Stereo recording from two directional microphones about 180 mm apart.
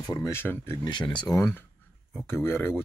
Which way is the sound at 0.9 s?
25° left (ahead or behind).